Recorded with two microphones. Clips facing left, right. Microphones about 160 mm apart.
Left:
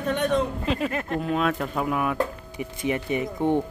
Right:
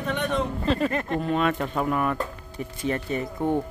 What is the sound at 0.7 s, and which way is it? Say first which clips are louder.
Speech: right 2 dB; 5° left (ahead or behind).